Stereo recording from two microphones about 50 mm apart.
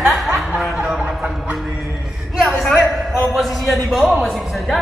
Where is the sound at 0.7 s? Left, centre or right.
Centre.